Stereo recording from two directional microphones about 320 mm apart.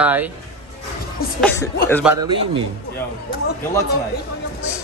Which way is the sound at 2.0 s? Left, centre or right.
Centre.